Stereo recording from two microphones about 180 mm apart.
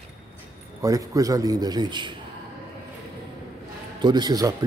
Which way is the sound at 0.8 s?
20° right (ahead or behind).